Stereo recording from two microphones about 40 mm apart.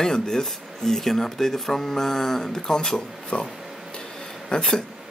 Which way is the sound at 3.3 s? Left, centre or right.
Left.